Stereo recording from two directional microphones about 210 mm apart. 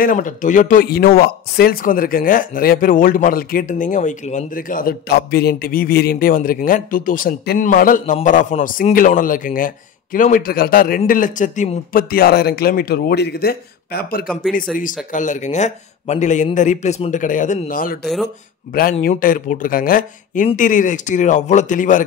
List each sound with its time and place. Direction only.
0.0 s speech: 40° left (ahead or behind)